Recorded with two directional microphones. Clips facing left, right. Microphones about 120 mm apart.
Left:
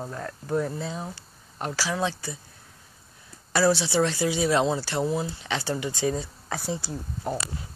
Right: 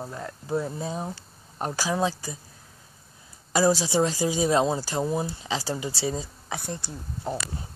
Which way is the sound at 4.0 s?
20° right (ahead or behind).